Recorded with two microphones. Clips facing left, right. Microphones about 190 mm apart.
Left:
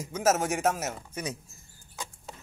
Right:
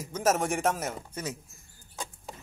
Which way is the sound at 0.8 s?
10° left (ahead or behind).